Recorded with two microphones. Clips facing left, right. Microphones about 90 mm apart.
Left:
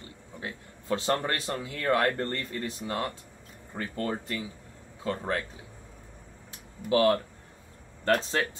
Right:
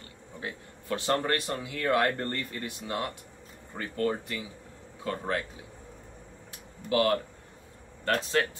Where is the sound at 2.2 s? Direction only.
15° right (ahead or behind).